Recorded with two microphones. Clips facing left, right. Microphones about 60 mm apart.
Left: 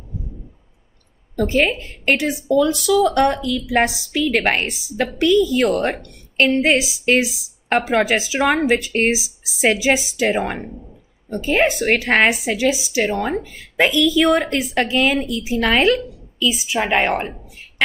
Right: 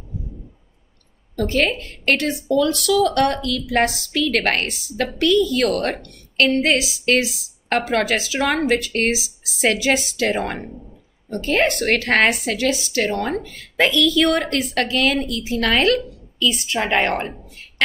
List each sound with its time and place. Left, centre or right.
1.3 s a woman's voice: centre
5.9 s a woman's voice: centre